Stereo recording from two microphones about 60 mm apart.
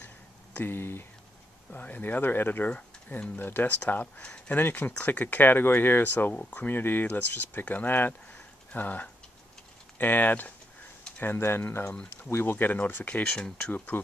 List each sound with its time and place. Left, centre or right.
0.6 s speech: left
12.5 s speech: left